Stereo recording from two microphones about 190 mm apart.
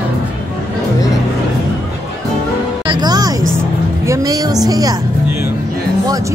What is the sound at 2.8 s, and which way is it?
Speech, 25° right (ahead or behind).